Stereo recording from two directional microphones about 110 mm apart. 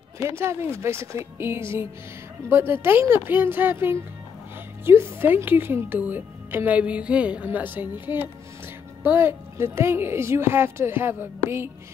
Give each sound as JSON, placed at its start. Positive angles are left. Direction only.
{"t": 0.4, "sound": "a woman's voice", "side_deg": -25}